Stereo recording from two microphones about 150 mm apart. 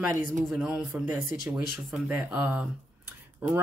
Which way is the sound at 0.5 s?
5° right (ahead or behind).